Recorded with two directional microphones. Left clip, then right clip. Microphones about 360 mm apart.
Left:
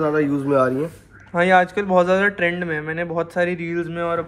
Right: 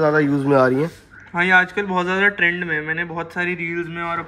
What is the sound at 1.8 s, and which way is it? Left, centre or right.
Speech, centre.